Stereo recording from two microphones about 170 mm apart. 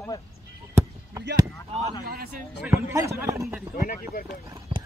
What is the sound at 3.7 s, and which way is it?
Speech, 55° left (ahead or behind).